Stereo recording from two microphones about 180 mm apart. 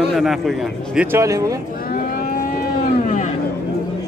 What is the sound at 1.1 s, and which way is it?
Speech, 15° right (ahead or behind).